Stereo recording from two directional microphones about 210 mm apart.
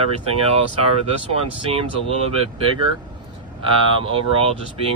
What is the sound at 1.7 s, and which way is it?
Speech, 30° right (ahead or behind).